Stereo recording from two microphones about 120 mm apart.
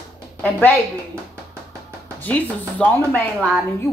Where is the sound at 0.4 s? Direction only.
10° left (ahead or behind).